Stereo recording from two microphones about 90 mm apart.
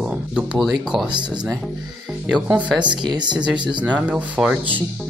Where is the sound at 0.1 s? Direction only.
10° right (ahead or behind).